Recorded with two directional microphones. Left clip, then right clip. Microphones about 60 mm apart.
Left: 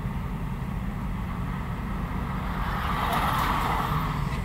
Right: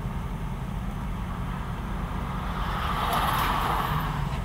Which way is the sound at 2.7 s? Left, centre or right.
Centre.